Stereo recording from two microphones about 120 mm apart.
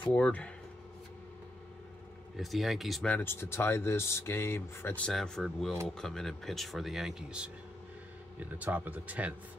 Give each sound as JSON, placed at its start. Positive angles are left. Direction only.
{"t": 0.1, "sound": "speech", "side_deg": 10}
{"t": 2.3, "sound": "speech", "side_deg": 0}
{"t": 3.1, "sound": "speech", "side_deg": 15}
{"t": 5.0, "sound": "speech", "side_deg": 5}